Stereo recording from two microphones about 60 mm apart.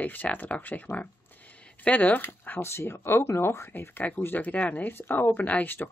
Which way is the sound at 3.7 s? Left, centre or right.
Left.